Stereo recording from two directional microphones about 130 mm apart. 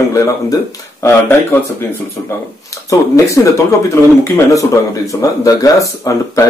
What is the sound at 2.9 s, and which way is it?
A man's voice, 25° left (ahead or behind).